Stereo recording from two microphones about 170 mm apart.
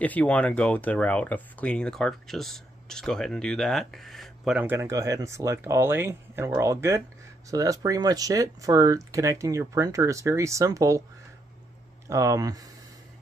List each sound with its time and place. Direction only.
0.0 s speech: 10° left (ahead or behind)
4.6 s speech: 15° right (ahead or behind)
12.1 s speech: 20° right (ahead or behind)